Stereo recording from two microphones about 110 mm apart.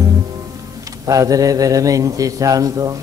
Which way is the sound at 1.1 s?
30° right (ahead or behind).